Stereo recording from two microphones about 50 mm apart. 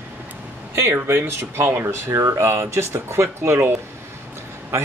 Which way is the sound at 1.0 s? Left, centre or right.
Right.